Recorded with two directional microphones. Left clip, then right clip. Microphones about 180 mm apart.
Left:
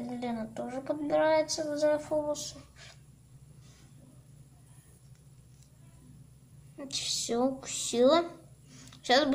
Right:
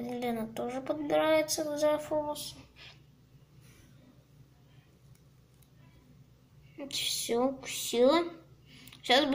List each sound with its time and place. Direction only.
0.0 s a woman's voice: 5° right (ahead or behind)
2.2 s speech: 25° left (ahead or behind)
7.2 s a woman's voice: 10° left (ahead or behind)